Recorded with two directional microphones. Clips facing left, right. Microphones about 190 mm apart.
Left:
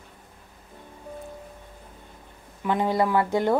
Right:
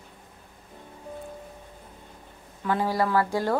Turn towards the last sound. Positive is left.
turn(degrees=20)  # may be behind; listen again after turning